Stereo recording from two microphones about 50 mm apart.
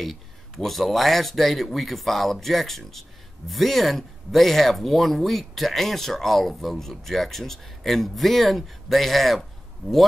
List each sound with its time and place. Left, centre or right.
0.0 s speech: centre